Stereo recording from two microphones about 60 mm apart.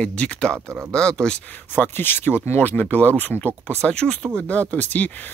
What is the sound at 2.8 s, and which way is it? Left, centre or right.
Speech, left.